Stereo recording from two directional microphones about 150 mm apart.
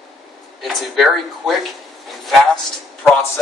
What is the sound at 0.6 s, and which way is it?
Speech, centre (ahead or behind).